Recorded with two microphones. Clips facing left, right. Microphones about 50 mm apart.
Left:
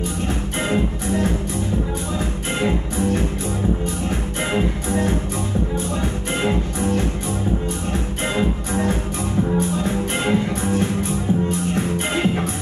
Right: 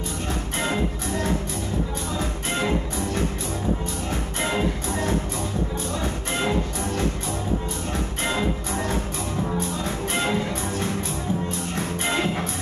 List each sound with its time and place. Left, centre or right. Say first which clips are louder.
0.6 s music: left 4 dB; left